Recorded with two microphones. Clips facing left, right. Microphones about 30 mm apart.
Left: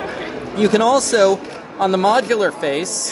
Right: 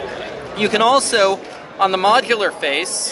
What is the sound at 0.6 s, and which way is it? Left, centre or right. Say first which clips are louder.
A man's voice: even; right.